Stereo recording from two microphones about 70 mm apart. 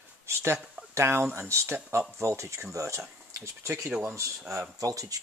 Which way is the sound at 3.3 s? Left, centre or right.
Right.